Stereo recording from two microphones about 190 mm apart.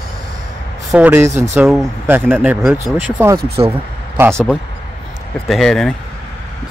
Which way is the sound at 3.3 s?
30° right (ahead or behind).